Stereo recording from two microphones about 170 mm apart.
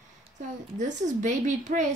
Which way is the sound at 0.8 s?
45° right (ahead or behind).